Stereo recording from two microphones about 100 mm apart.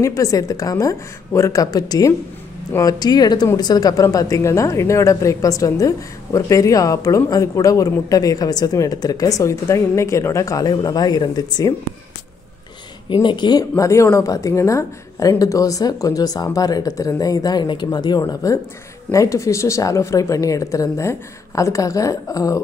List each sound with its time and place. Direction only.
0.0 s a woman's voice: 35° left (ahead or behind)
13.1 s a woman's voice: 50° left (ahead or behind); by 22.6 s 35° left (ahead or behind)